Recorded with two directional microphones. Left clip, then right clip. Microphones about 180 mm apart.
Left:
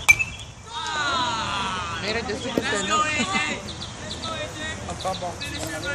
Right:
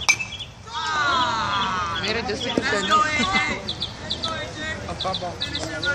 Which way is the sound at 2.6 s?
20° left (ahead or behind).